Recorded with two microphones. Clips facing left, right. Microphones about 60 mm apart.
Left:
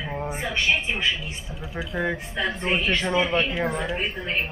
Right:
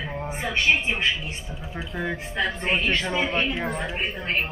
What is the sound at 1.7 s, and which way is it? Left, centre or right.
Speech, centre.